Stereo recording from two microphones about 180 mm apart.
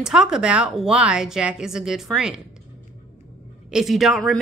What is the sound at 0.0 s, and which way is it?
Speech, 5° right (ahead or behind).